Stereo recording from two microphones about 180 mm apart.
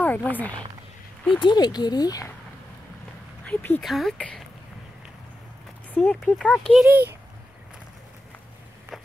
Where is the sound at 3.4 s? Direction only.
5° left (ahead or behind).